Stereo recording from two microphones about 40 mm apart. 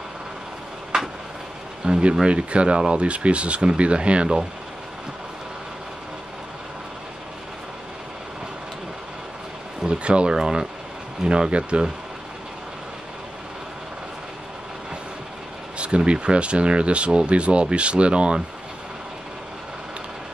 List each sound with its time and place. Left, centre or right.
1.9 s speech: right
9.8 s speech: right
15.8 s speech: right